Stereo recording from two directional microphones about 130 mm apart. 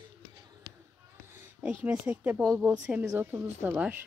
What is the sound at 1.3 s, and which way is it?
Speech, 15° right (ahead or behind).